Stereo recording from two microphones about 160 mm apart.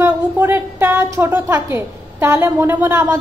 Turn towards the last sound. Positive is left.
turn(degrees=-15)  # may be behind; listen again after turning